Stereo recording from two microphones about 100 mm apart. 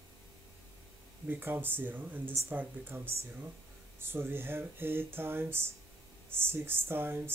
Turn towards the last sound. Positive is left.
turn(degrees=-25)  # may be behind; listen again after turning